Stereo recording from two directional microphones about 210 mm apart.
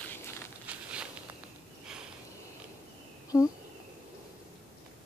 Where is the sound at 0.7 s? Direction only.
5° right (ahead or behind).